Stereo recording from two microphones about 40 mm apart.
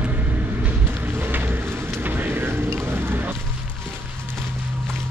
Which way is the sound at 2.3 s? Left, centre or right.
Right.